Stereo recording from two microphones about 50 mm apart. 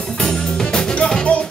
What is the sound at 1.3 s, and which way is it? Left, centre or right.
Music, left.